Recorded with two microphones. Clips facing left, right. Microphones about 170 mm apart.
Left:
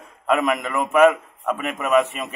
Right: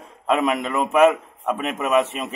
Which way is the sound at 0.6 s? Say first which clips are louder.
Right 1 dB; 30° right (ahead or behind).